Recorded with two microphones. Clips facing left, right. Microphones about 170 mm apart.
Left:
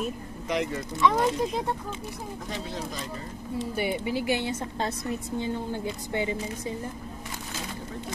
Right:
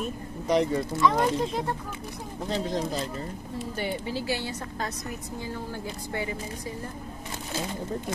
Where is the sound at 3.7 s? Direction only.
10° left (ahead or behind).